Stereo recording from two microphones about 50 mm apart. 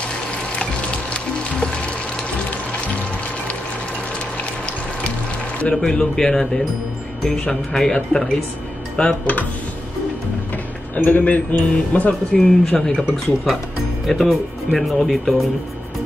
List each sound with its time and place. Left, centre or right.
1.1 s music: left
5.6 s speech: centre
7.7 s speech: centre
8.9 s speech: left
11.0 s a man's voice: left
11.7 s speech: centre
14.0 s speech: centre